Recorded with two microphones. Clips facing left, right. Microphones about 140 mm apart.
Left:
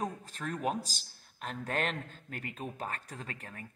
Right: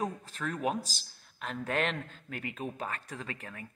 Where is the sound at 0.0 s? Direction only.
45° left (ahead or behind).